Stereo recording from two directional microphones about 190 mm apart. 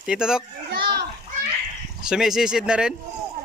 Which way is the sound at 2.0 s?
5° right (ahead or behind).